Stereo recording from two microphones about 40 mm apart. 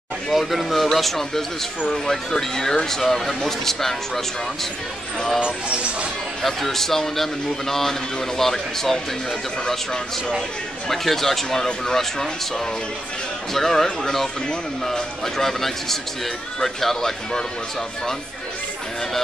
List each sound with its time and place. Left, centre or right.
0.3 s speech: centre
5.4 s speech: right
6.4 s speech: centre
10.9 s speech: centre
14.9 s speech: centre